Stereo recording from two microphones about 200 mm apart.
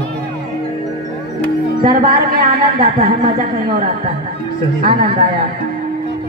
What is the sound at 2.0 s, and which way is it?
A woman's voice, 45° right (ahead or behind).